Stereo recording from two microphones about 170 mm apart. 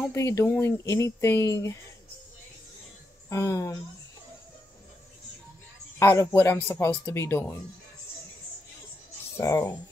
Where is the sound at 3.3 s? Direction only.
15° left (ahead or behind).